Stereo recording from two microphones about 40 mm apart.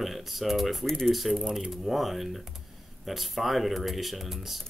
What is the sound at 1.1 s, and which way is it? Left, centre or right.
Speech, centre.